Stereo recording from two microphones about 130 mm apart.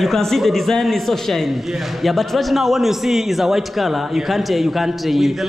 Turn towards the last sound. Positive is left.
turn(degrees=0)  # may be behind; listen again after turning